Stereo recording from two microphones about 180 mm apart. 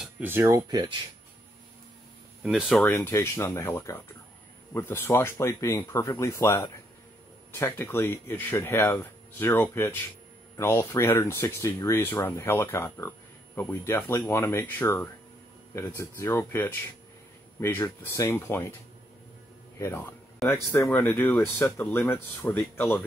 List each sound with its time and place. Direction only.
0.0 s speech: 10° right (ahead or behind)
2.4 s speech: centre (ahead or behind)
19.8 s speech: 10° left (ahead or behind)